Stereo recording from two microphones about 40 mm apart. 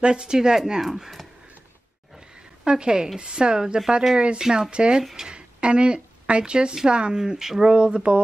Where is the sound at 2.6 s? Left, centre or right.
Centre.